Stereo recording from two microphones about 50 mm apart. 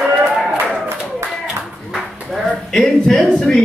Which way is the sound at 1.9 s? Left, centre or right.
Centre.